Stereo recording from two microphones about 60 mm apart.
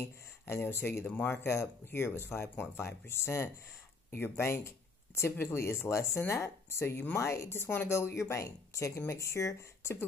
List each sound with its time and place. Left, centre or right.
0.0 s speech: left
1.0 s speech: left
1.3 s speech: left